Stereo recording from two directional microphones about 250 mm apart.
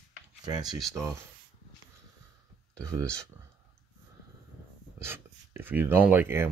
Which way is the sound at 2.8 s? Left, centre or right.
Centre.